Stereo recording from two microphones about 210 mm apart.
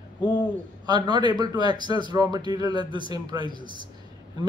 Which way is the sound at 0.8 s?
20° right (ahead or behind).